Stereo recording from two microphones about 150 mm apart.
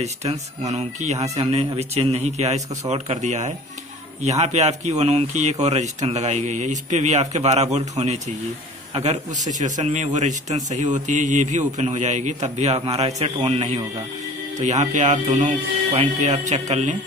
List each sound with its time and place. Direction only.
0.0 s a man's voice: 45° right (ahead or behind)